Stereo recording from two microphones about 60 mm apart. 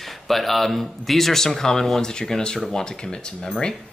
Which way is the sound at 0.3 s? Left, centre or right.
Centre.